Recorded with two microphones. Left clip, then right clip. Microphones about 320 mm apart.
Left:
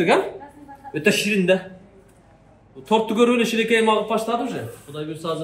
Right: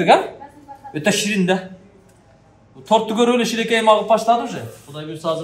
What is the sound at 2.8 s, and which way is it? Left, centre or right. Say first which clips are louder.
A man's voice: right 2 dB; right.